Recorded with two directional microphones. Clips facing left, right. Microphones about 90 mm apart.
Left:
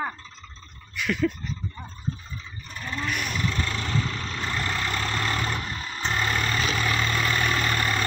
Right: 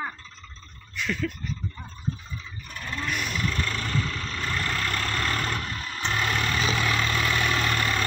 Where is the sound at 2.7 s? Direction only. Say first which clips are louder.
Left 1 dB; 5° left (ahead or behind).